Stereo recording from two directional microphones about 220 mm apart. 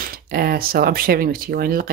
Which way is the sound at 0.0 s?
40° right (ahead or behind).